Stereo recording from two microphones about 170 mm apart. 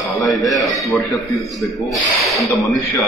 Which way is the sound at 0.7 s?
20° left (ahead or behind).